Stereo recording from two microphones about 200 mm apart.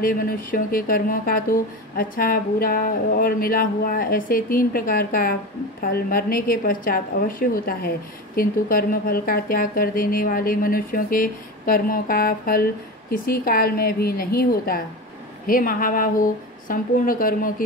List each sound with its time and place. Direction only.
0.0 s speech: 45° left (ahead or behind)